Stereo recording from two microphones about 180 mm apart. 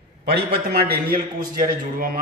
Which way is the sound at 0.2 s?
65° right (ahead or behind).